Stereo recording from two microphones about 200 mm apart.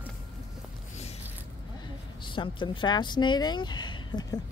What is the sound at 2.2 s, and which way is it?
Speech, 25° left (ahead or behind).